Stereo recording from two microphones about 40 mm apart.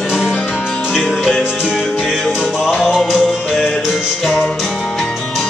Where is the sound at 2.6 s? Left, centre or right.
Centre.